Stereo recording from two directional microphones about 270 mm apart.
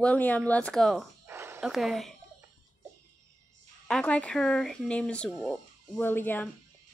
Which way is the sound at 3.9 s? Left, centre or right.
Centre.